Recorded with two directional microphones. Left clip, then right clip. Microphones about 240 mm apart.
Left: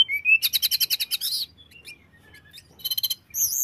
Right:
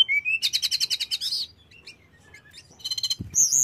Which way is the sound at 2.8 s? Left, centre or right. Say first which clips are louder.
Even; centre.